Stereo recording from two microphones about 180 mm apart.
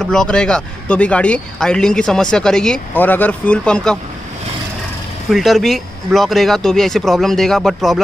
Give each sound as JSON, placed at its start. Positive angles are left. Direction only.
{"t": 0.0, "sound": "speech", "side_deg": 5}
{"t": 5.3, "sound": "speech", "side_deg": 0}